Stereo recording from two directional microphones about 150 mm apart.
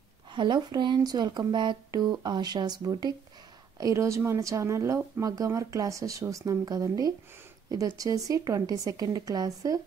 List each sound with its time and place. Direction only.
0.3 s speech: 30° right (ahead or behind)